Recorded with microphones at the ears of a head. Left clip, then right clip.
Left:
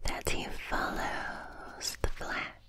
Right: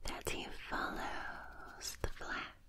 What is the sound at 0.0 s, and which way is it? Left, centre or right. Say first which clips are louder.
Whispering: left 7 dB; left.